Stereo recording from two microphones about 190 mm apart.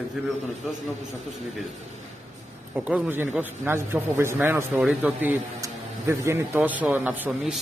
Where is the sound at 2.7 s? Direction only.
10° right (ahead or behind).